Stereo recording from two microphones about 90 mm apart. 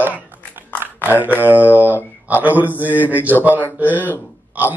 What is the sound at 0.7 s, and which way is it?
Speech, 20° right (ahead or behind).